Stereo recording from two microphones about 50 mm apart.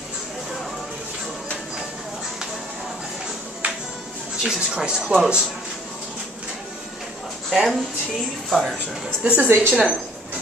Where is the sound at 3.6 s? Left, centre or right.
Right.